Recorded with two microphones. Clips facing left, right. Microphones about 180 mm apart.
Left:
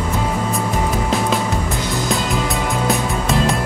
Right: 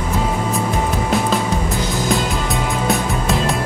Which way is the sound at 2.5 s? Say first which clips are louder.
Even; centre (ahead or behind).